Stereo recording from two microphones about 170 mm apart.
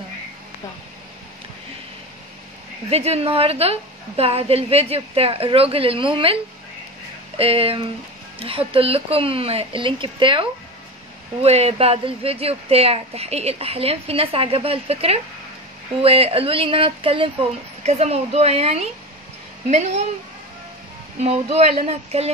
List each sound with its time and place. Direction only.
2.9 s speech: 40° right (ahead or behind)
7.3 s speech: 35° right (ahead or behind)
21.2 s speech: 40° right (ahead or behind)